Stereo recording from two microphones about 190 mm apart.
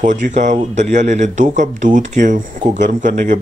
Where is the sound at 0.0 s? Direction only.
40° right (ahead or behind).